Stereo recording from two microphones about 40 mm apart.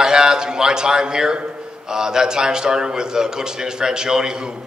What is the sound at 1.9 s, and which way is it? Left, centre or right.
A man's voice, centre.